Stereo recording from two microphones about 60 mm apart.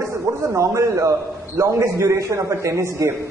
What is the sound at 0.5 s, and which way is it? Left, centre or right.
A man's voice, right.